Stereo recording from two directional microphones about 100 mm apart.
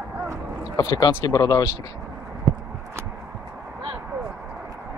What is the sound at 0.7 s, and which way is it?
Speech, 40° left (ahead or behind).